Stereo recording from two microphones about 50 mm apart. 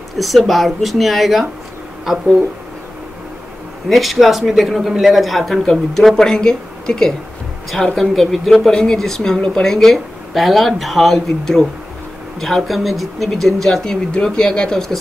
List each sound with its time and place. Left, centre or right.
0.2 s a man's voice: centre
3.9 s a man's voice: centre
14.1 s speech: centre